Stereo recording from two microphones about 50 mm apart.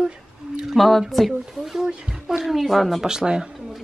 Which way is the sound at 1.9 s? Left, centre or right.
Centre.